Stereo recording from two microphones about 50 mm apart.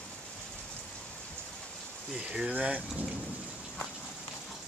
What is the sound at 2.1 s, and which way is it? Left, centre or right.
Speech, centre.